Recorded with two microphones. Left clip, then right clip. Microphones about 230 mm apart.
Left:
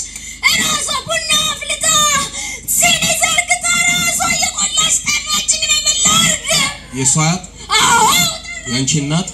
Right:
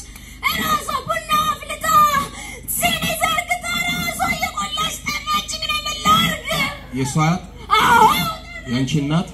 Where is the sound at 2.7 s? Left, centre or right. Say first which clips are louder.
Left 6 dB; left.